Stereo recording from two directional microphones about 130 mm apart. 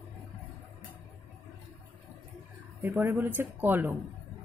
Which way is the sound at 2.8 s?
15° right (ahead or behind).